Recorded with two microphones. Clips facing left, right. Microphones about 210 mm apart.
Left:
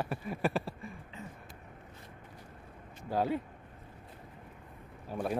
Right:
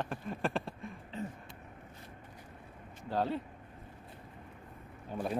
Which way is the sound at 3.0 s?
10° left (ahead or behind).